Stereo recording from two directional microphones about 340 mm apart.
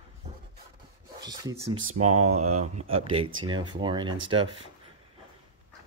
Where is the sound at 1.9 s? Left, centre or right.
Centre.